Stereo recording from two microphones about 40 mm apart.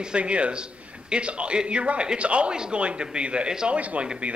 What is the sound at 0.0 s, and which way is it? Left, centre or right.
A man's voice, right.